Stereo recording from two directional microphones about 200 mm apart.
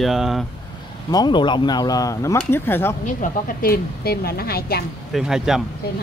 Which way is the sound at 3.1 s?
40° left (ahead or behind).